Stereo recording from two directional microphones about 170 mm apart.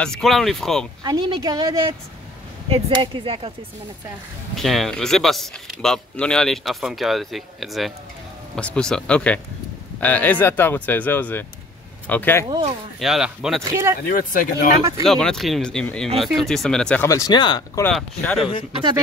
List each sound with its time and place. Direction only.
0.0 s speech: centre (ahead or behind)
1.0 s a woman's voice: 20° right (ahead or behind)
2.7 s speech: 30° right (ahead or behind)
4.6 s speech: centre (ahead or behind)
12.4 s a woman's voice: 25° right (ahead or behind)
13.0 s speech: 5° right (ahead or behind)
13.6 s speech: 20° right (ahead or behind)
14.0 s speech: 55° left (ahead or behind)
15.0 s speech: 5° left (ahead or behind); by 17.8 s 25° left (ahead or behind)
17.8 s speech: 5° left (ahead or behind)